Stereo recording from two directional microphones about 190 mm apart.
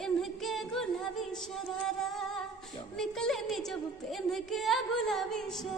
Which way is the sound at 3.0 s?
Centre (ahead or behind).